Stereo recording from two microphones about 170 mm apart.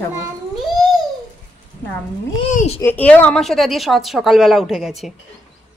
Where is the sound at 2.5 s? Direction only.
40° left (ahead or behind).